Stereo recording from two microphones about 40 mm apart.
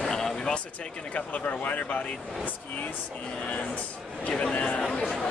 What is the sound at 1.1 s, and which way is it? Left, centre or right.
Speech, left.